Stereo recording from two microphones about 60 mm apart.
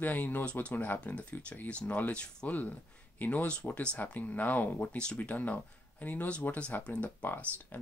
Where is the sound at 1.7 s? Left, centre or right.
Centre.